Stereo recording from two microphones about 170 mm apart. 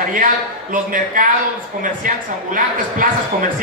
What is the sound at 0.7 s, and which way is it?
Speech, 50° right (ahead or behind).